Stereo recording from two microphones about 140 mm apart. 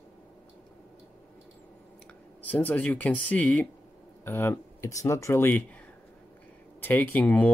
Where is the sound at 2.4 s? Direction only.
10° left (ahead or behind).